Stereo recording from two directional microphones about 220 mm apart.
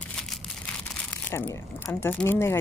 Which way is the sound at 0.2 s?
5° left (ahead or behind).